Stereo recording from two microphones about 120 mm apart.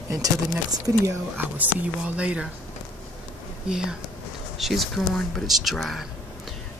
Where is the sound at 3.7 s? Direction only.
5° right (ahead or behind).